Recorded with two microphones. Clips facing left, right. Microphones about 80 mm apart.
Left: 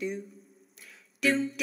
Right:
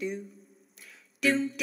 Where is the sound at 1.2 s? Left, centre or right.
Centre.